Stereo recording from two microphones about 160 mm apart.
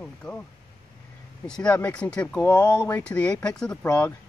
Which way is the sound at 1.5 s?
5° left (ahead or behind).